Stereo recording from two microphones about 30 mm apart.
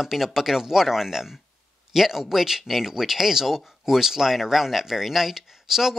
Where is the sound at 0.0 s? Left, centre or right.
Centre.